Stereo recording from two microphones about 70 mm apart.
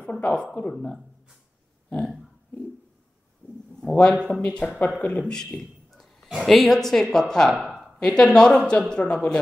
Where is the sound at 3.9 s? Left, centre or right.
Centre.